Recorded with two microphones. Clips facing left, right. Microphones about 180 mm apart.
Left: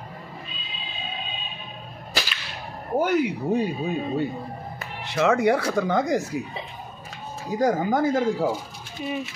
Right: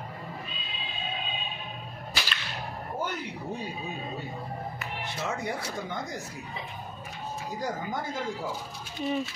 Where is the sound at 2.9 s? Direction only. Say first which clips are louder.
Left 14 dB; 80° left.